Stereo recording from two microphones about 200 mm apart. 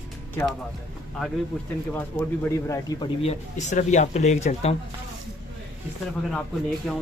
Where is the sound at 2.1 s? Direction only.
10° left (ahead or behind).